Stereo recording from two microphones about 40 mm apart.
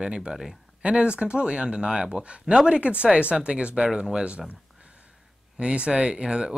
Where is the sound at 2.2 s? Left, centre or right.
Right.